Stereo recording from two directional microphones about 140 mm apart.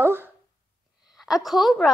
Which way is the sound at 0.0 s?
15° right (ahead or behind).